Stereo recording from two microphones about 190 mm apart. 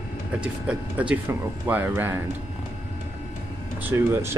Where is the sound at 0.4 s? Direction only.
5° right (ahead or behind).